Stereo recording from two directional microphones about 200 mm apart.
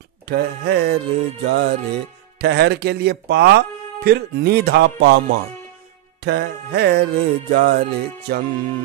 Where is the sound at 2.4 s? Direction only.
55° right (ahead or behind).